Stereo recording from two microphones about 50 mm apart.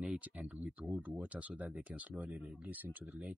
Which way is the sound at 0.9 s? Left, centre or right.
Right.